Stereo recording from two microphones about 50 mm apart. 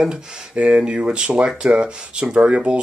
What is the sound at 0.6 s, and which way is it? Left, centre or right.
Speech, right.